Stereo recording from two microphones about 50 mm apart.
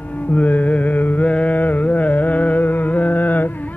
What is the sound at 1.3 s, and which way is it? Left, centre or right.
Music, left.